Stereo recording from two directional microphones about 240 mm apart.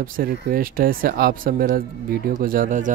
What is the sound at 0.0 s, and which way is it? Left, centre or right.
Speech, right.